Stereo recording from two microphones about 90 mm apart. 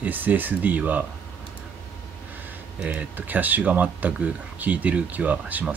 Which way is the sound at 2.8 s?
20° right (ahead or behind).